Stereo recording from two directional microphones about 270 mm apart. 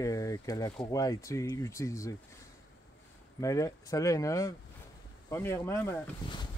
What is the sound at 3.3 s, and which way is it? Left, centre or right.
Speech, centre.